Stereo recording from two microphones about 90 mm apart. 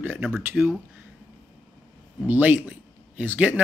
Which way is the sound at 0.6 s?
Centre (ahead or behind).